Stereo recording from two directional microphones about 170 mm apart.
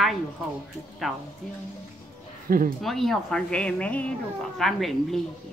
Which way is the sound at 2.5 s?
55° right (ahead or behind).